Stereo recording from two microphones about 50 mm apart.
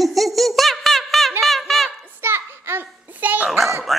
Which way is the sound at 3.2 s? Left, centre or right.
Right.